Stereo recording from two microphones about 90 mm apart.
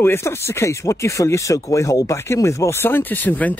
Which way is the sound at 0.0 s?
25° left (ahead or behind).